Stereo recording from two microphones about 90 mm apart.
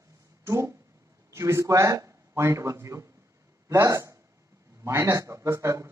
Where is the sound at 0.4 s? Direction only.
35° right (ahead or behind).